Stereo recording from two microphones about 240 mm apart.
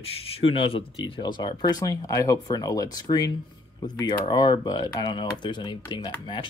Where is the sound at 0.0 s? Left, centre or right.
Left.